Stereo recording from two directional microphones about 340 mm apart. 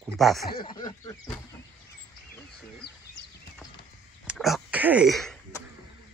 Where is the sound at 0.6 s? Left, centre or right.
Centre.